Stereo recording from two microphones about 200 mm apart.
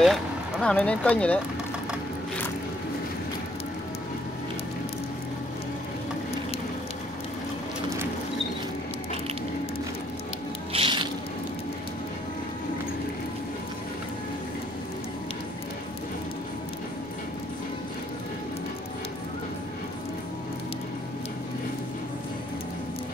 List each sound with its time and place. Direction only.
0.0 s speech: centre (ahead or behind)
10.7 s music: 25° right (ahead or behind)